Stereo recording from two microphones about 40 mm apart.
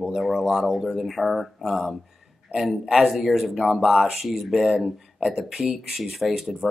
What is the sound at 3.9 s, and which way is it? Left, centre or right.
Speech, centre.